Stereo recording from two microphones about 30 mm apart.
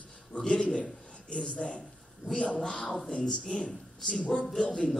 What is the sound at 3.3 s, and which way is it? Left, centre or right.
Speech, left.